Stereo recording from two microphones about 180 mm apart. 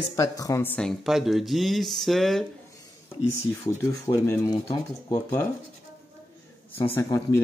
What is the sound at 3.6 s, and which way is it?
Speech, 15° left (ahead or behind).